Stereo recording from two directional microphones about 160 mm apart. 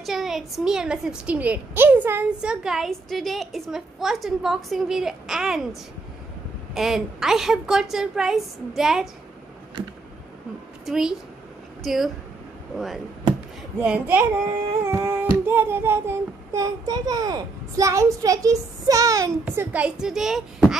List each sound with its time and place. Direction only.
0.0 s a woman's voice: centre (ahead or behind)
10.9 s a woman's voice: 5° right (ahead or behind)
13.7 s child singing: 10° right (ahead or behind)